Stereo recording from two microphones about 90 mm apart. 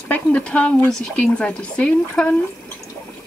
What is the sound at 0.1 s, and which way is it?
Speech, 15° left (ahead or behind).